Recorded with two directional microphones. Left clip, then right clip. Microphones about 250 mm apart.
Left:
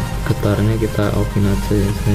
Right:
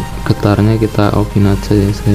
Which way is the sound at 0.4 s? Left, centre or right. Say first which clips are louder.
Right 6 dB; right.